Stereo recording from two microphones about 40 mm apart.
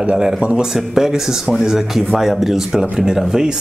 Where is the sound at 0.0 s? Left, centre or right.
Right.